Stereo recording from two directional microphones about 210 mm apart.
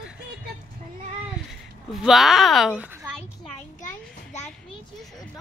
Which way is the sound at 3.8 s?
35° left (ahead or behind).